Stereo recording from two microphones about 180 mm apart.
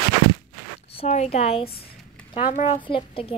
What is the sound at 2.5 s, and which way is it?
Speech, 40° left (ahead or behind).